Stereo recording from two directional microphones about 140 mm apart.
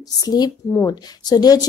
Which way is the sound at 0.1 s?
30° left (ahead or behind).